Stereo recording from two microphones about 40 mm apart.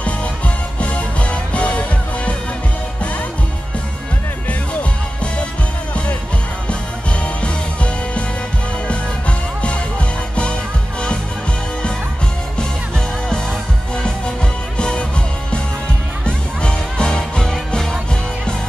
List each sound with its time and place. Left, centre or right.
0.7 s music: left
6.7 s music: left
9.6 s music: left
12.5 s music: centre
16.3 s music: left